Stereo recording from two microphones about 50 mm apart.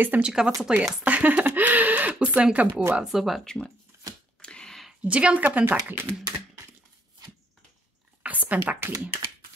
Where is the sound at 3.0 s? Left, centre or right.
Centre.